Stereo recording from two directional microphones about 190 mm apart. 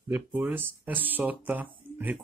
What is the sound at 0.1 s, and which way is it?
Speech, 10° right (ahead or behind).